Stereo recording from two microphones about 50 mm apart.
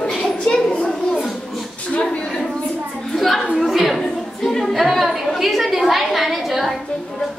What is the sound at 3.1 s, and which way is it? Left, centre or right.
Speech, centre.